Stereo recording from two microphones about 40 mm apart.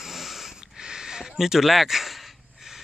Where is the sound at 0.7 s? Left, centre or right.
Centre.